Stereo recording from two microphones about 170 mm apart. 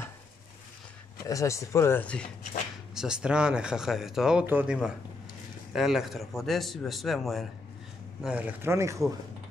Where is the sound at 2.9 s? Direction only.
5° right (ahead or behind).